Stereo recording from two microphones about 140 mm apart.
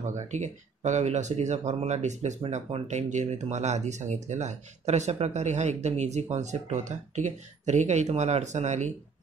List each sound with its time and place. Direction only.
0.0 s speech: 55° right (ahead or behind)